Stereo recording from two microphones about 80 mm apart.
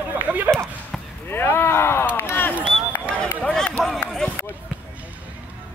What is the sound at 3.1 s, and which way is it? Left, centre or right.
Speech, centre.